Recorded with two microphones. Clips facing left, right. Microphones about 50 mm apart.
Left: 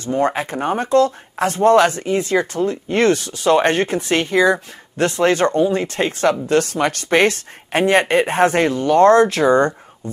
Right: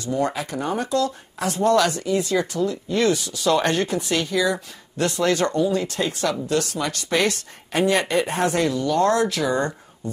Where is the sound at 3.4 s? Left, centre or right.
Left.